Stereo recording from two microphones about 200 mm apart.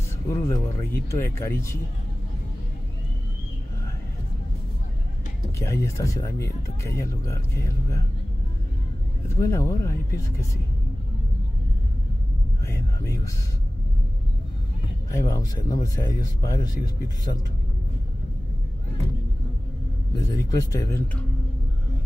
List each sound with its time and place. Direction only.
0.3 s speech: 15° left (ahead or behind)
5.6 s speech: 15° left (ahead or behind)
9.3 s speech: 15° left (ahead or behind)
12.6 s speech: 15° left (ahead or behind)
15.1 s speech: 15° left (ahead or behind)
20.2 s speech: 15° left (ahead or behind)